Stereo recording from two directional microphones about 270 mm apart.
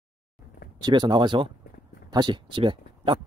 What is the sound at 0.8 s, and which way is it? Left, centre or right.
Speech, centre.